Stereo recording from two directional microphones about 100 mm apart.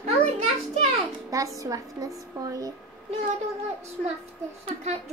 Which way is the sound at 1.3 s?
35° right (ahead or behind).